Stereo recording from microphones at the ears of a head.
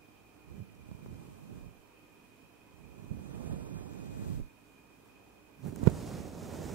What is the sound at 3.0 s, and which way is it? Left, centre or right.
Vehicle, right.